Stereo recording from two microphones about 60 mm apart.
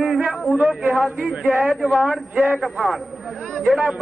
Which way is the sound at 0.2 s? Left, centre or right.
Right.